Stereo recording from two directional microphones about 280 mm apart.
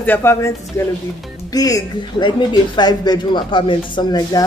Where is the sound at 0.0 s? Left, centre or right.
Centre.